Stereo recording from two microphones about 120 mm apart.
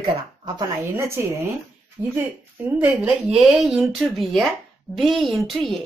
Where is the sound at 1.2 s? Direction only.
20° right (ahead or behind).